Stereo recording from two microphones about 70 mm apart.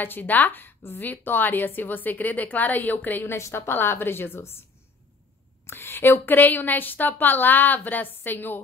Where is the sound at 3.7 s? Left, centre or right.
Left.